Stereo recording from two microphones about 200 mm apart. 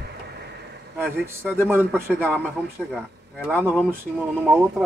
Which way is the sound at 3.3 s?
10° right (ahead or behind).